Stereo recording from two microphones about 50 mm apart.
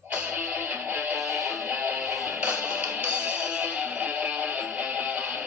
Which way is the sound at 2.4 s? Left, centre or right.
Right.